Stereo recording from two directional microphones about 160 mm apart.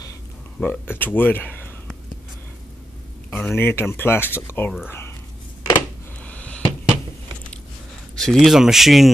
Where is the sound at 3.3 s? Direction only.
10° left (ahead or behind).